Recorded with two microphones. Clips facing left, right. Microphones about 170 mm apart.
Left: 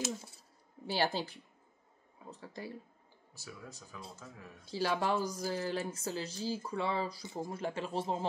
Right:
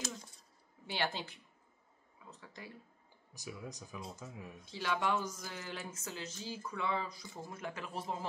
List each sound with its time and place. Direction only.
0.8 s speech: 35° left (ahead or behind)
3.3 s speech: 15° right (ahead or behind)
4.6 s speech: 35° left (ahead or behind)